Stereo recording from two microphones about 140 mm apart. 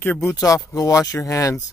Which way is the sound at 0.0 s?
15° left (ahead or behind).